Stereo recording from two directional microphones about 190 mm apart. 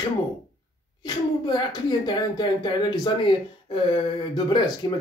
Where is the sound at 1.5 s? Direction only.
25° left (ahead or behind).